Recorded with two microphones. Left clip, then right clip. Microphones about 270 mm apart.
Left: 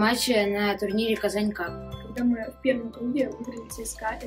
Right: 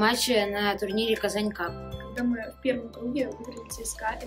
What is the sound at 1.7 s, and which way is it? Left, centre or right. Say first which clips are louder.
Speech: even; centre.